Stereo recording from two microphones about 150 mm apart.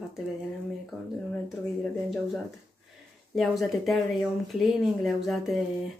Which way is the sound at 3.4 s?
Centre (ahead or behind).